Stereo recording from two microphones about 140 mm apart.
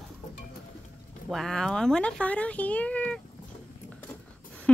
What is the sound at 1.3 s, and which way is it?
Speech, 5° left (ahead or behind).